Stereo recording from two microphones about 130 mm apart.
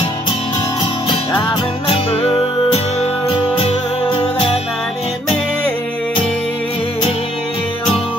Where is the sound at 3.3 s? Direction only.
45° left (ahead or behind).